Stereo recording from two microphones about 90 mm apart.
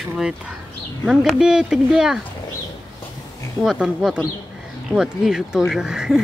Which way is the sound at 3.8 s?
10° right (ahead or behind).